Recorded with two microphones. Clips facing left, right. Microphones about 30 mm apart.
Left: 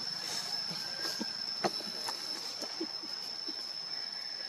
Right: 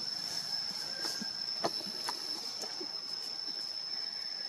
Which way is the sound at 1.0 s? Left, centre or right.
Centre.